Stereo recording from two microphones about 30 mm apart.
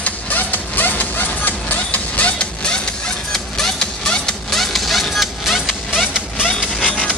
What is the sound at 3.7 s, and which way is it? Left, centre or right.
Music, left.